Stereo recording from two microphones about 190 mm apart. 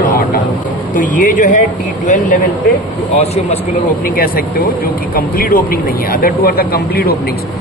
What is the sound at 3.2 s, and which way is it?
Speech, 35° left (ahead or behind).